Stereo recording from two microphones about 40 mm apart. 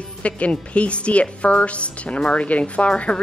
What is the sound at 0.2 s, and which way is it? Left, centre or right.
Speech, left.